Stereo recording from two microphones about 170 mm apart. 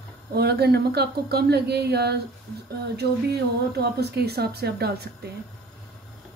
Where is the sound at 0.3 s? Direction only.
70° right (ahead or behind).